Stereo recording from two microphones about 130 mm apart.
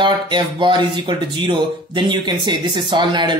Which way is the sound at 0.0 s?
40° right (ahead or behind).